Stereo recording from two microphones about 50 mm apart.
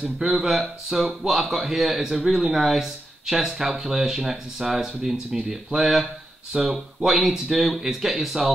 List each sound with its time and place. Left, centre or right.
0.2 s speech: centre